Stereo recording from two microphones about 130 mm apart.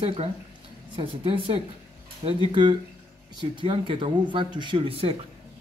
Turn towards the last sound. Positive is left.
turn(degrees=-45)  # may be behind; listen again after turning